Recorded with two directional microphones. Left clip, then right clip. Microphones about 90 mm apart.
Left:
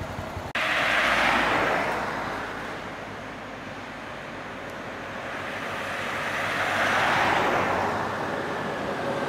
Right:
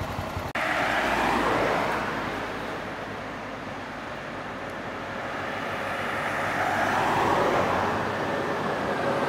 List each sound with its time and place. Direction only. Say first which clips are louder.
0.6 s vehicle: left 2 dB; 25° left (ahead or behind); by 2.0 s 40° left (ahead or behind)
5.9 s vehicle: even; 25° left (ahead or behind)